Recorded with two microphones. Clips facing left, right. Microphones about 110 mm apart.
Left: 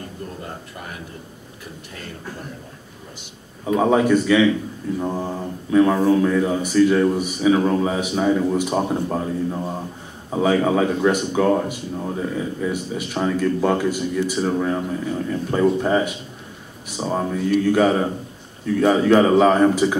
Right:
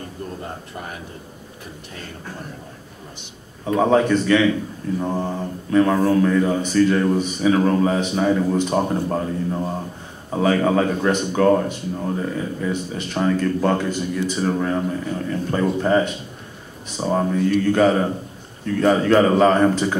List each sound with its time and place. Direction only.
3.6 s speech: 5° left (ahead or behind)